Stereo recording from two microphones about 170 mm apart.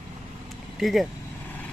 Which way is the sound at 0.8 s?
Centre (ahead or behind).